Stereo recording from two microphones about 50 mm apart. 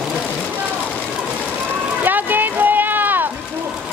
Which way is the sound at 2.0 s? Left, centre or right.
Right.